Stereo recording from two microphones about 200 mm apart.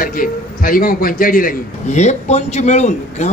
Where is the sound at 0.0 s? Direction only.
45° left (ahead or behind).